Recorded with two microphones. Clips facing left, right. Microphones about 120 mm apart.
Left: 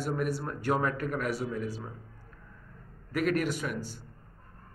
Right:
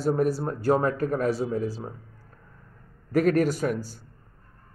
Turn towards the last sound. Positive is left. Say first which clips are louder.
# right 7 dB
turn(degrees=-40)  # may be behind; listen again after turning